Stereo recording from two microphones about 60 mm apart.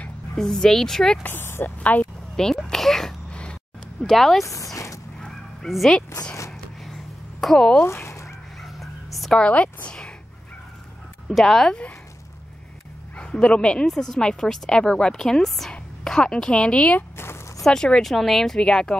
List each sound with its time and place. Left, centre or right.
0.4 s a woman's voice: centre
1.2 s speech: left
1.8 s speech: left
2.3 s a woman's voice: centre
3.3 s a sound: centre
4.0 s speech: centre
4.7 s a sound: left
5.7 s speech: centre
7.3 s speech: centre
7.8 s a sound: left
8.6 s dog: centre
9.4 s speech: left
11.2 s speech: centre
13.1 s a woman's voice: centre